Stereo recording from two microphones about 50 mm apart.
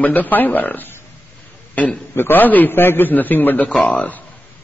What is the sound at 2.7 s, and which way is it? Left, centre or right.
Speech, left.